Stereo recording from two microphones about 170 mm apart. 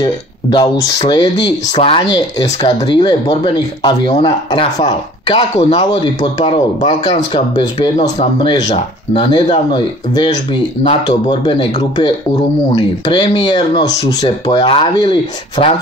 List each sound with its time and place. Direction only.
0.0 s speech: 25° left (ahead or behind)
10.8 s speech: 30° left (ahead or behind)